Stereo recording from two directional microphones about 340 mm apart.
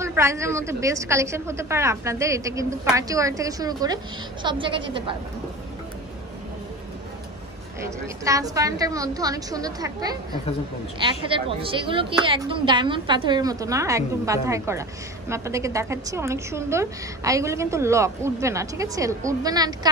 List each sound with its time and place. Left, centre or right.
0.0 s a woman's voice: centre
7.8 s a woman's voice: centre